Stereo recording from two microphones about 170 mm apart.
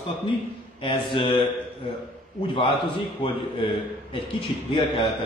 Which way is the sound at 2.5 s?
30° left (ahead or behind).